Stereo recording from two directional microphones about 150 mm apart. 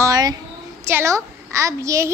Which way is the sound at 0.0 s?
25° right (ahead or behind).